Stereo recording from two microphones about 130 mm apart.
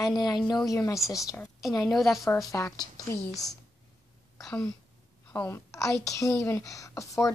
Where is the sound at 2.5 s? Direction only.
20° left (ahead or behind).